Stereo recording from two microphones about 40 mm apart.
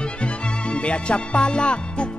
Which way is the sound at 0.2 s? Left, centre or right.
Left.